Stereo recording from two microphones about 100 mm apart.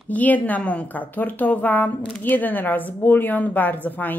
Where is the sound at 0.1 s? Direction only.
15° left (ahead or behind).